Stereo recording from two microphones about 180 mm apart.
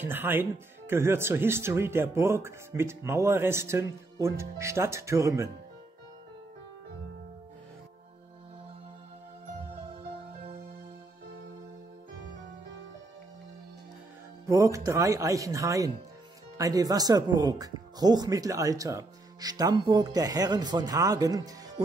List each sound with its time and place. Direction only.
0.0 s speech: 10° right (ahead or behind)
14.4 s speech: 20° right (ahead or behind)